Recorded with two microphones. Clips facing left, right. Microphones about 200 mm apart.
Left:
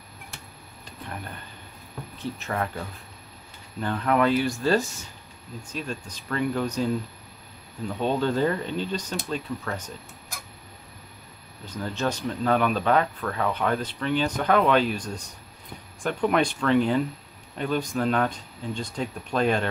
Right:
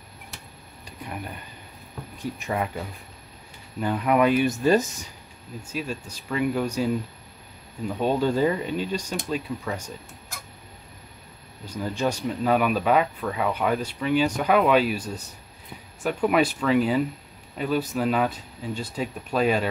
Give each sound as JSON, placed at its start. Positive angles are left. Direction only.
{"t": 2.1, "sound": "speech", "side_deg": -15}
{"t": 5.6, "sound": "speech", "side_deg": -10}
{"t": 8.0, "sound": "speech", "side_deg": -10}
{"t": 11.6, "sound": "speech", "side_deg": -10}